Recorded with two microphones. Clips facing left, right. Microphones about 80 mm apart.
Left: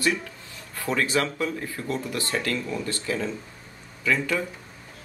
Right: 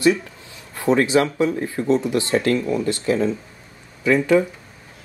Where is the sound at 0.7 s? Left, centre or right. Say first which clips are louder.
Right 8 dB; right.